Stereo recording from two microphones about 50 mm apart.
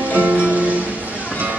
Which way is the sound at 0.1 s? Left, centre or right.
Right.